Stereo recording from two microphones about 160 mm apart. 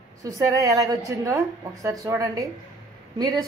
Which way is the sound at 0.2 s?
20° right (ahead or behind).